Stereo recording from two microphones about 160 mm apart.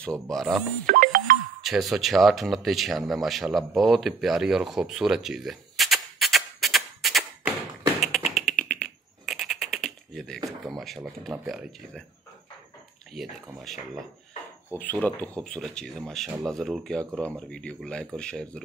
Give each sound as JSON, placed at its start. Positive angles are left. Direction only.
{"t": 0.0, "sound": "speech", "side_deg": 5}
{"t": 0.8, "sound": "music", "side_deg": -60}
{"t": 1.6, "sound": "speech", "side_deg": 0}
{"t": 8.0, "sound": "tap", "side_deg": 0}
{"t": 9.3, "sound": "a sound", "side_deg": 0}
{"t": 11.4, "sound": "speech", "side_deg": 0}
{"t": 13.1, "sound": "speech", "side_deg": 0}
{"t": 14.7, "sound": "speech", "side_deg": 10}